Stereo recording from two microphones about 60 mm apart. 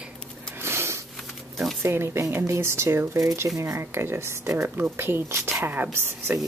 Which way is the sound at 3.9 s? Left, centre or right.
Right.